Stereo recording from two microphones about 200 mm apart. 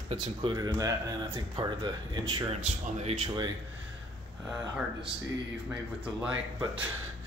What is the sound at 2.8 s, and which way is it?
Speech, 30° right (ahead or behind).